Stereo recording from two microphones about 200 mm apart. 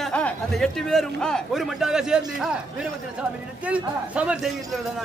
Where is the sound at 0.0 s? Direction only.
5° left (ahead or behind).